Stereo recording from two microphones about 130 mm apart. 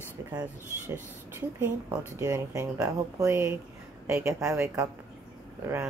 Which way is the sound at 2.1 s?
20° right (ahead or behind).